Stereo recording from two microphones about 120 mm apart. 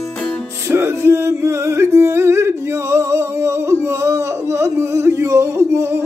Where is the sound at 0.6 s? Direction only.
20° right (ahead or behind).